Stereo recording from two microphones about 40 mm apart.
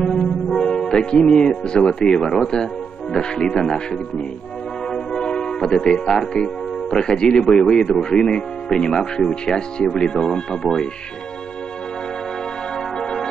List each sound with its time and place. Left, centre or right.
0.0 s music: centre
1.1 s speech: left
12.7 s music: centre